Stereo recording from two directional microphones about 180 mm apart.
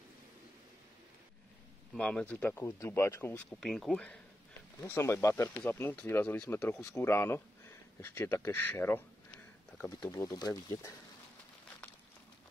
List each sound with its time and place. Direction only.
2.0 s speech: 5° left (ahead or behind)